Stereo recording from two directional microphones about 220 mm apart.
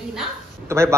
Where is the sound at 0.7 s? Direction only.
15° right (ahead or behind).